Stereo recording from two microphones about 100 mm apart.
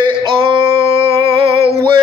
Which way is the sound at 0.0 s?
60° right (ahead or behind).